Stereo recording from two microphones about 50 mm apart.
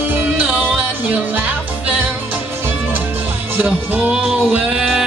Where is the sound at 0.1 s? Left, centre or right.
Right.